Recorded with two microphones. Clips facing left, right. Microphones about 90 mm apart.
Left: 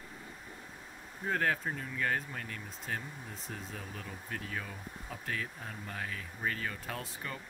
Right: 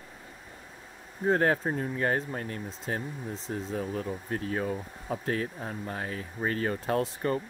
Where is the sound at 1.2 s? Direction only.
35° right (ahead or behind).